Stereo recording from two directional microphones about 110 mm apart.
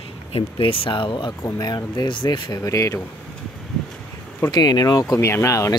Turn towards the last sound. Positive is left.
turn(degrees=30)  # may be behind; listen again after turning